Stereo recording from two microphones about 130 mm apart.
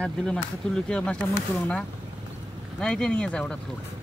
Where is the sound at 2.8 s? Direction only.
5° left (ahead or behind).